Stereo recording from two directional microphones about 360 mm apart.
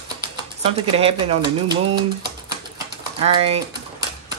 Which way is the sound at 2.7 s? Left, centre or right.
Centre.